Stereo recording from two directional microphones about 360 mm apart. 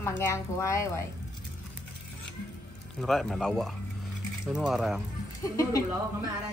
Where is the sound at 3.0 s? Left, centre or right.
Centre.